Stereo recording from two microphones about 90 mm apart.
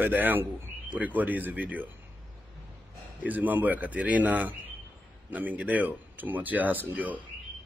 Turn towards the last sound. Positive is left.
turn(degrees=-20)  # may be behind; listen again after turning